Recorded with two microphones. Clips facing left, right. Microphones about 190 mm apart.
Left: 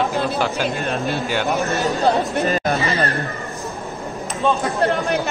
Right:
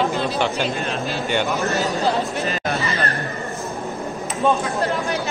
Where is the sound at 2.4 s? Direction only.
45° left (ahead or behind).